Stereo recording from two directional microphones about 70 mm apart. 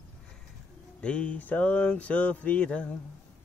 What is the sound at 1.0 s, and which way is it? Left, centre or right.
Speech, centre.